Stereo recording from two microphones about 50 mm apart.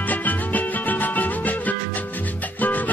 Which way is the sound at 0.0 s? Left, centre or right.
Left.